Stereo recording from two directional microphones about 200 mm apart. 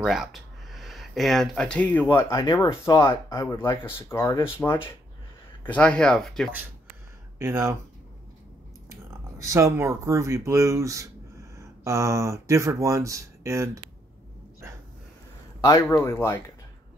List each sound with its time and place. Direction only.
0.0 s speech: centre (ahead or behind)
2.2 s speech: 25° left (ahead or behind); by 6.5 s centre (ahead or behind)
7.3 s speech: 15° right (ahead or behind)
9.4 s speech: 15° right (ahead or behind)
15.6 s speech: 15° left (ahead or behind)